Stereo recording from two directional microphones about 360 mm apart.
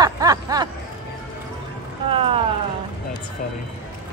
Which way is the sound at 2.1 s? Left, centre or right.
Centre.